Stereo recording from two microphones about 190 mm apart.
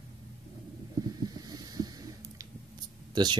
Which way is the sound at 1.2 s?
20° right (ahead or behind).